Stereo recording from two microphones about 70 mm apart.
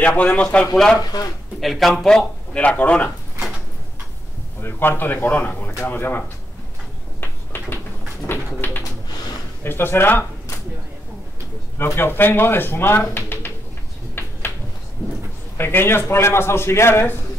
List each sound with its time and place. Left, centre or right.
0.0 s speech: centre
0.9 s speech: left
1.6 s a man's voice: centre
2.6 s a man's voice: centre
4.6 s a man's voice: left
7.2 s a sound: left
8.3 s bird: left
9.6 s speech: left
11.8 s speech: left
15.5 s speech: left